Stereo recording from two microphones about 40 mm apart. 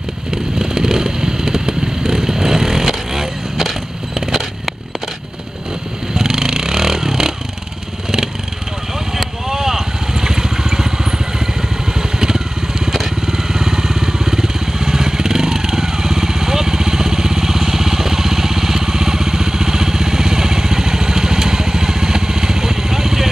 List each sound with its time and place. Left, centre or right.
0.3 s vehicle: centre
6.1 s vehicle: centre
9.1 s vehicle: centre
12.8 s motorcycle: centre